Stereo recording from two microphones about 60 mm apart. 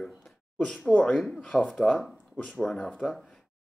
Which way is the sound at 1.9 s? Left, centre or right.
Centre.